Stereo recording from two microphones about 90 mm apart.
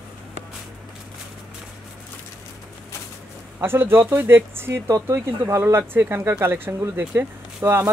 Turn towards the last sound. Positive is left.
turn(degrees=-25)  # may be behind; listen again after turning